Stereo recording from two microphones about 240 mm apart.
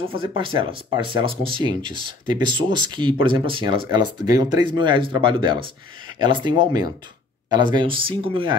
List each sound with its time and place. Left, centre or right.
0.2 s speech: right